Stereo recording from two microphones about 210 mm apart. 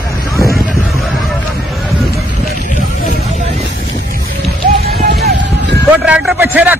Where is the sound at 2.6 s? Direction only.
40° left (ahead or behind).